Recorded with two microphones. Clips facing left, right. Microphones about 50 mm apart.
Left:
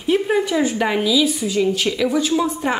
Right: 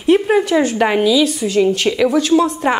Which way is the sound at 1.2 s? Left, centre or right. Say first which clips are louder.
Right 3 dB; centre.